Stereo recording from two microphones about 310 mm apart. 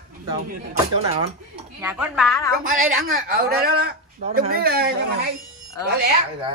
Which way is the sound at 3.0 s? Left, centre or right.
Right.